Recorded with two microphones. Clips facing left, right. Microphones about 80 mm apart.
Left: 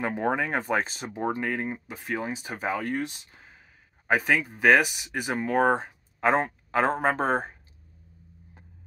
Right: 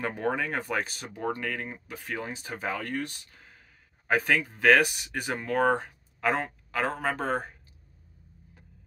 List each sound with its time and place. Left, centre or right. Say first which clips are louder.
0.0 s speech: left 3 dB; centre